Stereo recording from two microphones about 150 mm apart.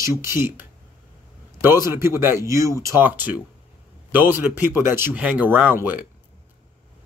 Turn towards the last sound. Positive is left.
turn(degrees=-10)  # may be behind; listen again after turning